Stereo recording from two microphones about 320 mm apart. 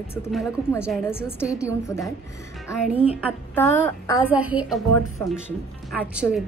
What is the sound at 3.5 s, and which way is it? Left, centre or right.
Speech, centre.